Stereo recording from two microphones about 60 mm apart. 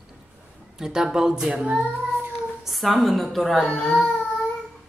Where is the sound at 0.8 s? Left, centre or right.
Centre.